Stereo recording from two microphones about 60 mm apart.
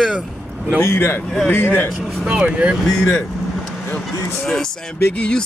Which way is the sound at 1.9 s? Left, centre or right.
Centre.